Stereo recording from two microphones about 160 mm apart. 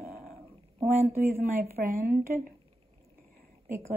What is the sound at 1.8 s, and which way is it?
Speech, 65° right (ahead or behind).